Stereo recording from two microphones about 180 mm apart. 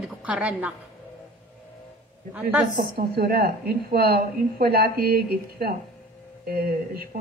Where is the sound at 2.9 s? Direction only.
60° right (ahead or behind).